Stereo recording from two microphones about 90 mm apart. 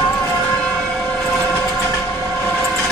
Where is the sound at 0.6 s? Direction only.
10° left (ahead or behind).